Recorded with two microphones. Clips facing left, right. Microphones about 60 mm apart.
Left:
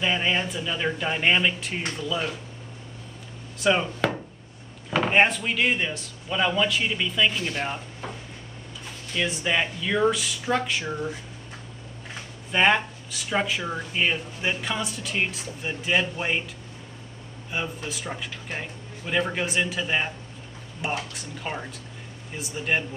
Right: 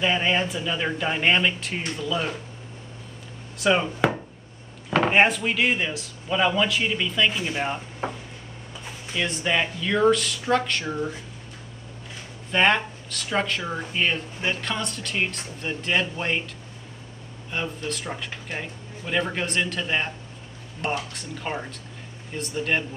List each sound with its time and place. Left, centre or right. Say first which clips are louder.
0.0 s speech: right 2 dB; centre
3.5 s speech: right 1 dB; centre
4.9 s speech: right 2 dB; centre
7.3 s speech: right 2 dB; centre
8.0 s a sound: right 8 dB; right
9.1 s speech: right 1 dB; centre
12.4 s speech: even; centre
17.5 s speech: right 1 dB; centre